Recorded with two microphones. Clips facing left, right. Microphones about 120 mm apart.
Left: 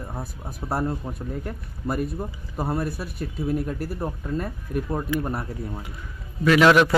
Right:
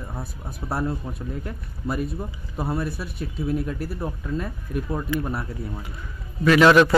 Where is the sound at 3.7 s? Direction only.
45° left (ahead or behind).